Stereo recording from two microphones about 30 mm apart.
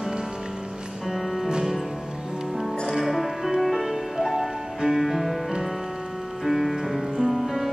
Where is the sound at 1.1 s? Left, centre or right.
Centre.